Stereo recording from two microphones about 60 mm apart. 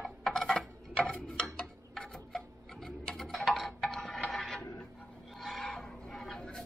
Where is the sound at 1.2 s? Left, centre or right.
Centre.